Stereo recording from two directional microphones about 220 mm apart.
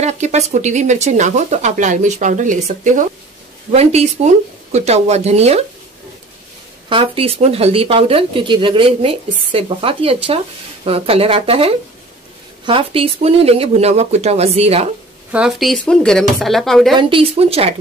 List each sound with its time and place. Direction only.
0.0 s speech: 30° right (ahead or behind)
6.9 s speech: 25° right (ahead or behind)
15.3 s speech: centre (ahead or behind)
16.9 s speech: 25° right (ahead or behind)